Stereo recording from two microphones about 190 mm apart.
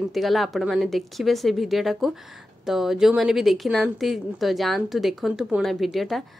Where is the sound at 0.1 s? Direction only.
Centre (ahead or behind).